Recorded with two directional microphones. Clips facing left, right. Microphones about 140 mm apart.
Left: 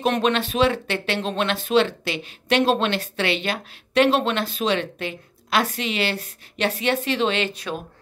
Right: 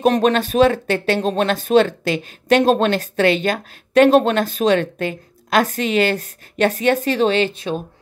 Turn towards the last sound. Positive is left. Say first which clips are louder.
# right 6 dB
turn(degrees=-40)  # may be behind; listen again after turning